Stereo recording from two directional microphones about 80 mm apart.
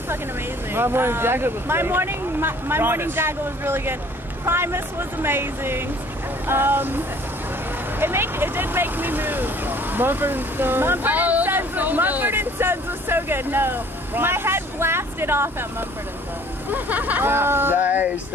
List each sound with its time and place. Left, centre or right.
0.7 s speech: right
8.0 s speech: right
16.7 s speech: right